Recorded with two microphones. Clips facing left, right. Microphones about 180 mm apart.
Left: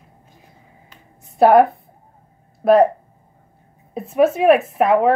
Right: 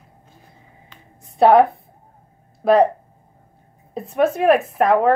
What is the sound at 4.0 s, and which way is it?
Speech, 5° left (ahead or behind).